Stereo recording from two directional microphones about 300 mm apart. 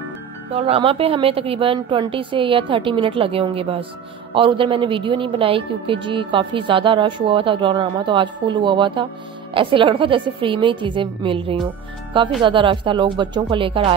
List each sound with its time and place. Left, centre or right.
0.5 s a woman's voice: centre